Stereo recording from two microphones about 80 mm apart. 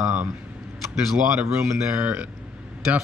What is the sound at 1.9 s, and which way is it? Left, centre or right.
Speech, centre.